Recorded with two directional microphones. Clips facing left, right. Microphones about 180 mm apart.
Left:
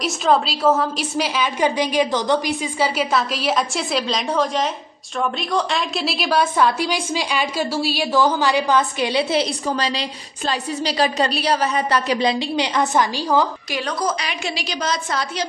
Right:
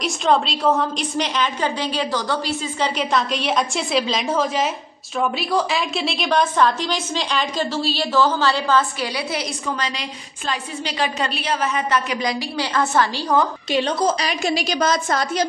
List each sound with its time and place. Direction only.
0.0 s a woman's voice: 5° left (ahead or behind)
13.7 s a woman's voice: 25° right (ahead or behind)
14.2 s a woman's voice: 45° right (ahead or behind)